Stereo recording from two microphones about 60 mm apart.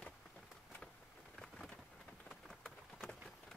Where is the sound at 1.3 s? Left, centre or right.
Centre.